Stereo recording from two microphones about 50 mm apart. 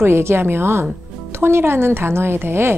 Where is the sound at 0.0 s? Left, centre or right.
Right.